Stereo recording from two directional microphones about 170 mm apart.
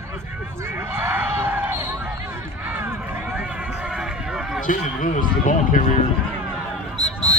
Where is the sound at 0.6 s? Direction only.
15° right (ahead or behind).